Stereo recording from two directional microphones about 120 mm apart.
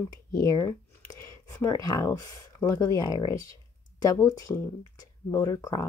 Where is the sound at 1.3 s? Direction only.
30° left (ahead or behind).